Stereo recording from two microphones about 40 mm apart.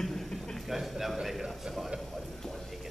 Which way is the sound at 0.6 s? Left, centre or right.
Centre.